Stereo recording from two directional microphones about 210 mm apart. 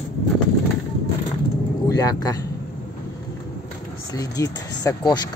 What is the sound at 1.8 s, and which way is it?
Speech, 15° left (ahead or behind).